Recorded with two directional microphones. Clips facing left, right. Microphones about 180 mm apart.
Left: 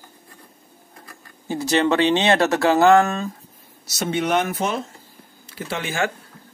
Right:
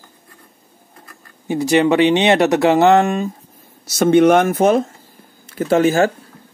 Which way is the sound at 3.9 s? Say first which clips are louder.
Right 10 dB; 50° right (ahead or behind).